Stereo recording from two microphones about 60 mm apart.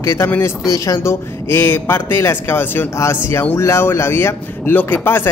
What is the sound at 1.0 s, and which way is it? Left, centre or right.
A man's voice, left.